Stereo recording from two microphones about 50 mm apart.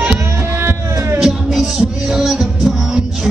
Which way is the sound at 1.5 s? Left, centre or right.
Centre.